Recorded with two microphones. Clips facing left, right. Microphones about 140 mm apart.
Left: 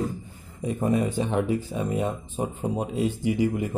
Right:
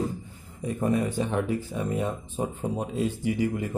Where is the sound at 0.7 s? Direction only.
15° left (ahead or behind).